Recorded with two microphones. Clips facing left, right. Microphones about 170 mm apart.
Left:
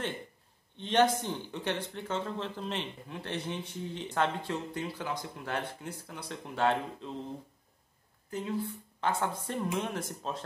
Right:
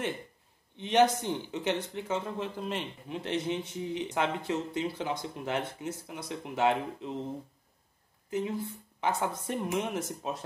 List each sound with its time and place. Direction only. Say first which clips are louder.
0.7 s speech: right 2 dB; 15° right (ahead or behind)
3.1 s speech: right 8 dB; 20° right (ahead or behind)
8.3 s speech: right 2 dB; 15° right (ahead or behind)